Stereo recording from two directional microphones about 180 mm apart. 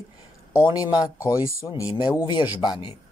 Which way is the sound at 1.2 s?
15° left (ahead or behind).